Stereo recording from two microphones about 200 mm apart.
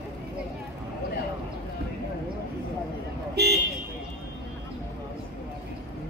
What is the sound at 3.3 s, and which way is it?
Vehicle, 55° right (ahead or behind).